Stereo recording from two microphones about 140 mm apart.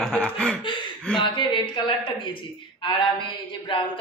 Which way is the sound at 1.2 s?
35° left (ahead or behind).